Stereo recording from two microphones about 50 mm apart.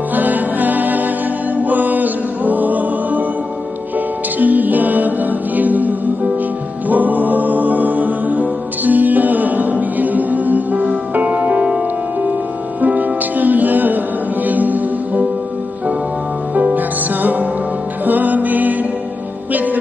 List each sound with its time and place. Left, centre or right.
0.1 s music: right
4.4 s music: right
16.7 s music: right